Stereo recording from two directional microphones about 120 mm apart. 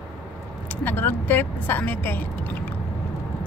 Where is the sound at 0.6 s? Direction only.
15° left (ahead or behind).